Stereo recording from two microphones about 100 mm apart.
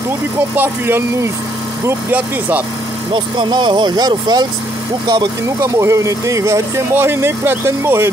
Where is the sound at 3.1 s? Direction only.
50° right (ahead or behind).